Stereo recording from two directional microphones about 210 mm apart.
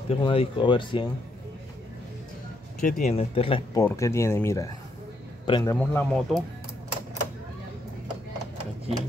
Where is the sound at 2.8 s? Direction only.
40° left (ahead or behind).